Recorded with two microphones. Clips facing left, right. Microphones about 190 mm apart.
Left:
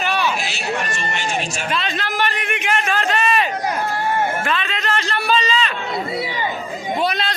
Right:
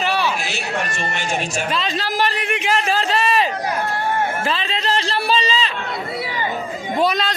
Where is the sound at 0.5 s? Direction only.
50° right (ahead or behind).